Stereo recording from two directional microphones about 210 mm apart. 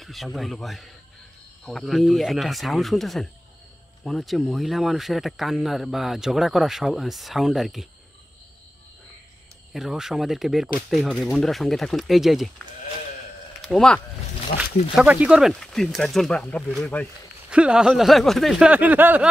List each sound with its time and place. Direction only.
0.0 s speech: centre (ahead or behind)
9.8 s speech: centre (ahead or behind)
13.6 s speech: centre (ahead or behind)
14.5 s speech: 35° left (ahead or behind)
15.0 s speech: 5° right (ahead or behind)
17.5 s speech: 5° right (ahead or behind)